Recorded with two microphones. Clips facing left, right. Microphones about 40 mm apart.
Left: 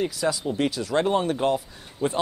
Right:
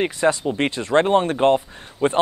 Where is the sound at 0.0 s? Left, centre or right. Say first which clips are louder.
Right 6 dB; right.